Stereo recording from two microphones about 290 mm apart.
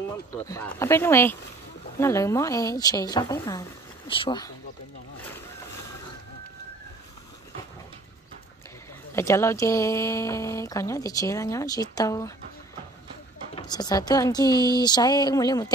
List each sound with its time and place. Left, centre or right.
0.5 s speech: centre
9.1 s speech: centre
13.6 s speech: centre